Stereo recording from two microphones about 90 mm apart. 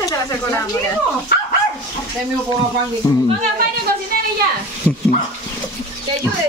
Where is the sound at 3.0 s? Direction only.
40° left (ahead or behind).